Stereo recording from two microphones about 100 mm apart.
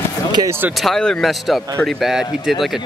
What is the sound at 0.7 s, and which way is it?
Speech, 5° left (ahead or behind).